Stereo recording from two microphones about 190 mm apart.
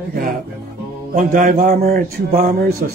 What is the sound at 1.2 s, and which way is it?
Speech, 45° right (ahead or behind).